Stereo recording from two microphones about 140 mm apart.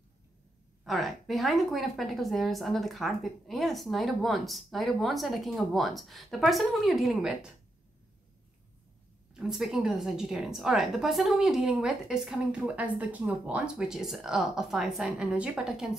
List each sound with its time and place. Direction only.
0.8 s a woman's voice: centre (ahead or behind)
9.3 s a woman's voice: 5° right (ahead or behind)